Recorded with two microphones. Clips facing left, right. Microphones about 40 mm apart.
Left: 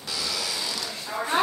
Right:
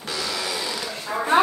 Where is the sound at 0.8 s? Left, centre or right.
Right.